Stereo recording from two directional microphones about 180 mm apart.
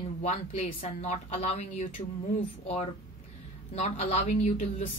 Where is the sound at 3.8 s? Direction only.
40° left (ahead or behind).